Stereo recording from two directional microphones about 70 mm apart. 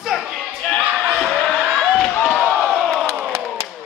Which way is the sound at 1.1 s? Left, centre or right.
Centre.